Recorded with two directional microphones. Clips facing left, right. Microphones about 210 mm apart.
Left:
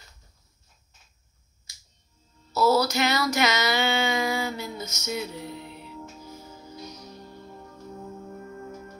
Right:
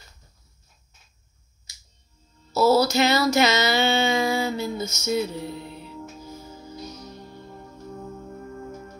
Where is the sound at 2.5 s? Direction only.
30° right (ahead or behind).